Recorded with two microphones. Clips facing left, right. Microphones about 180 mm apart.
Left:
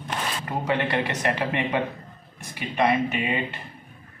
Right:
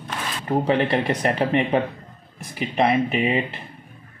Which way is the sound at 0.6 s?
30° right (ahead or behind).